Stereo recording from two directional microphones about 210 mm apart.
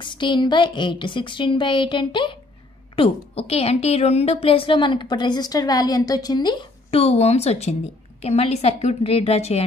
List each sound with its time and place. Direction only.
0.0 s a woman's voice: 20° left (ahead or behind)